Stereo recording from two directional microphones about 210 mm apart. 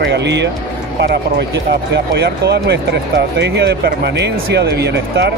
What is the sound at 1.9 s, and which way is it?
Speech, 55° right (ahead or behind).